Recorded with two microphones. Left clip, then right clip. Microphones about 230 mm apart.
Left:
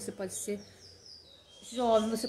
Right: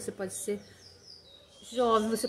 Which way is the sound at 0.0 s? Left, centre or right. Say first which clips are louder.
Right 2 dB; centre.